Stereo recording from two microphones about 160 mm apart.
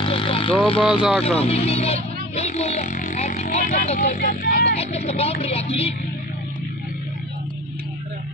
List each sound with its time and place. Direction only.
0.0 s vehicle: 35° left (ahead or behind)
0.7 s speech: 35° left (ahead or behind)
1.4 s vehicle: 40° left (ahead or behind)
3.8 s speech: 45° left (ahead or behind); by 4.7 s 65° left (ahead or behind)
4.7 s speech: 40° left (ahead or behind)